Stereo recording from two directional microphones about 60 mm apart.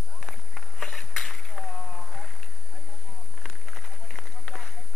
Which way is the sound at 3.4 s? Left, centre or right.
Centre.